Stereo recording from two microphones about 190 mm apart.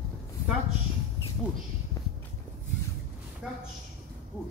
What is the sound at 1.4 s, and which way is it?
Speech, 15° left (ahead or behind).